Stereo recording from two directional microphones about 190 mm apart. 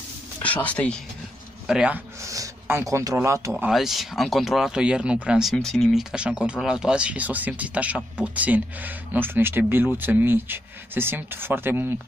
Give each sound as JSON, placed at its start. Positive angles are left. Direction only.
{"t": 0.4, "sound": "speech", "side_deg": 10}
{"t": 1.7, "sound": "speech", "side_deg": -5}
{"t": 3.6, "sound": "speech", "side_deg": 0}